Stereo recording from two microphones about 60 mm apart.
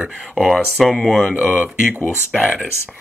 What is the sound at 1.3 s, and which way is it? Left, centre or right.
Speech, right.